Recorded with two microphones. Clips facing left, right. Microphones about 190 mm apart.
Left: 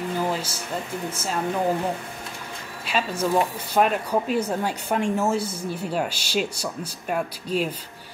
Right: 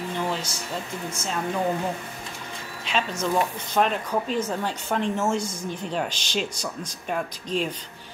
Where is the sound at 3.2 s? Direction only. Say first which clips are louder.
Left 4 dB; 10° left (ahead or behind).